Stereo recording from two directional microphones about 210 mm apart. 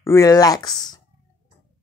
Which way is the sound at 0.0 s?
15° left (ahead or behind).